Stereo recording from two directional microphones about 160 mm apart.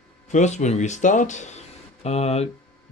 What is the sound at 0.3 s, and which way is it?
Speech, 45° left (ahead or behind).